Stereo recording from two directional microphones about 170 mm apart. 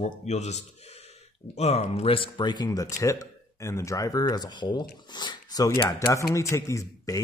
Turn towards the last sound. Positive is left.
turn(degrees=20)  # may be behind; listen again after turning